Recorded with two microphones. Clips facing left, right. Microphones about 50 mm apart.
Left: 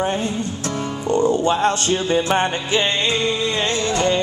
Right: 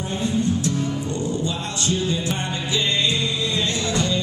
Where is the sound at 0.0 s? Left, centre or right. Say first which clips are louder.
Left 2 dB; left.